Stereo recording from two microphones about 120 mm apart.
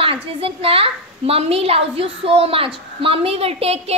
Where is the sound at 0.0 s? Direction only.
50° right (ahead or behind).